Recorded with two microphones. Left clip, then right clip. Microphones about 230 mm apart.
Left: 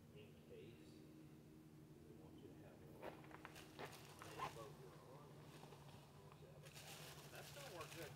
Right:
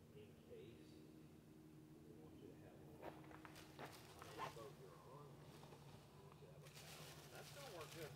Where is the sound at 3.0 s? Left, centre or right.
Left.